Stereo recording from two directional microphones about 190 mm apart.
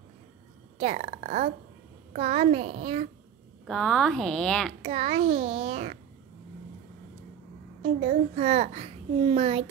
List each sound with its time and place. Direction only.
0.7 s a child's voice: 40° right (ahead or behind)
3.6 s speech: centre (ahead or behind)
4.8 s a child's voice: 35° right (ahead or behind)
7.8 s a child's voice: 35° right (ahead or behind)